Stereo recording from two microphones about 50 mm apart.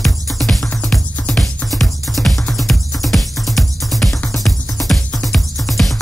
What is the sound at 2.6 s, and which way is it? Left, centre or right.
Music, centre.